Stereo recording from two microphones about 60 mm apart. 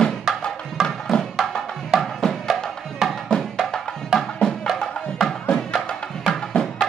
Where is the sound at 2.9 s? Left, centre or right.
Centre.